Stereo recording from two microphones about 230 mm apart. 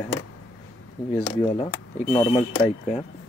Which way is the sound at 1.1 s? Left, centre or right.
Left.